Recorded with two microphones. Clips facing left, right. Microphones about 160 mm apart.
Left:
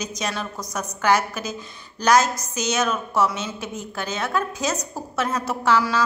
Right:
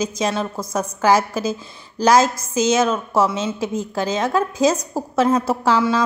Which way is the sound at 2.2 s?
90° right.